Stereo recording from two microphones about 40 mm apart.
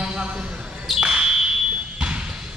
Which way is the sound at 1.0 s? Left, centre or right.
Centre.